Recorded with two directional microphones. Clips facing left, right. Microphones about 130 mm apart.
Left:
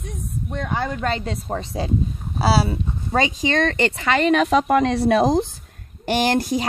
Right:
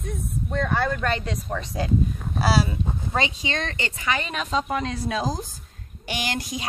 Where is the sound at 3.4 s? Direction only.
55° left (ahead or behind); by 5.5 s 70° left (ahead or behind).